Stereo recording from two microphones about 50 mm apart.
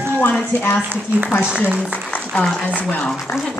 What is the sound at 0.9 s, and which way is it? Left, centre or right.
Speech, right.